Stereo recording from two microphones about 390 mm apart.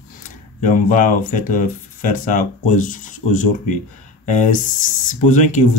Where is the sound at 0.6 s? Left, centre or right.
Centre.